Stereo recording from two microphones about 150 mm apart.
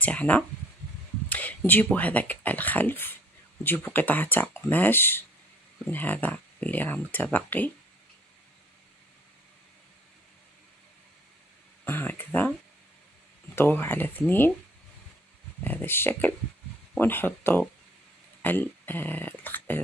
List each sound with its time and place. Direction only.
0.0 s speech: 10° left (ahead or behind)
1.3 s a sound: 10° left (ahead or behind)
1.9 s speech: 10° left (ahead or behind)
11.8 s speech: 15° left (ahead or behind)
13.6 s speech: 15° left (ahead or behind)
15.6 s speech: 15° left (ahead or behind)